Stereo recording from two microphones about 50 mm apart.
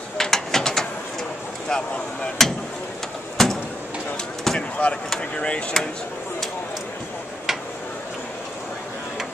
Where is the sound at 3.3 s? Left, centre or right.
Centre.